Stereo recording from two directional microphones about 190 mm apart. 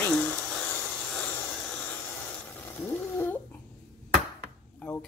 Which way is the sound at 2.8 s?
10° left (ahead or behind).